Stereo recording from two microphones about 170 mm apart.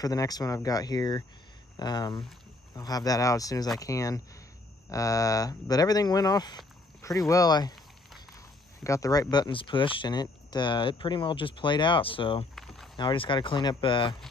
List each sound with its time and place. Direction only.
0.0 s speech: 20° left (ahead or behind)
8.8 s speech: 20° left (ahead or behind)
12.5 s a sound: centre (ahead or behind)
12.9 s speech: 30° left (ahead or behind)